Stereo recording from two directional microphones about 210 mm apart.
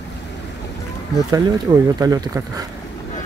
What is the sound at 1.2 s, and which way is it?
Speech, 15° right (ahead or behind).